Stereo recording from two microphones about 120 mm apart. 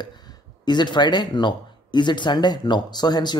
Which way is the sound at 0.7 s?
40° left (ahead or behind).